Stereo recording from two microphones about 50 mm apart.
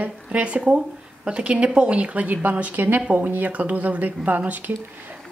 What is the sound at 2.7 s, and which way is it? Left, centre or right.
Speech, right.